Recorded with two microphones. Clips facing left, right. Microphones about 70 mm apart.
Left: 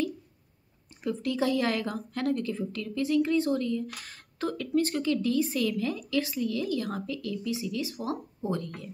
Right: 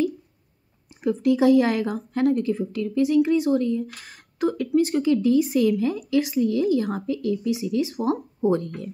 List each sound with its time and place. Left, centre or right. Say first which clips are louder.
0.8 s a woman's voice: right 10 dB; centre